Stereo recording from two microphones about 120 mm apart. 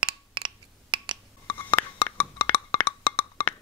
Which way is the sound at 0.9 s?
40° right (ahead or behind).